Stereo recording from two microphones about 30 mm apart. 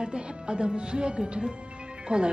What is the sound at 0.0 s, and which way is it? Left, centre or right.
A woman's voice, right.